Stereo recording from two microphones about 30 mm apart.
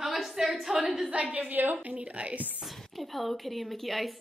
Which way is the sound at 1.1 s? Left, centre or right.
Right.